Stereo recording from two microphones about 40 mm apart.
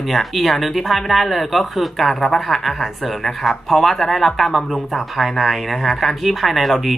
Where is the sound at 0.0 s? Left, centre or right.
Centre.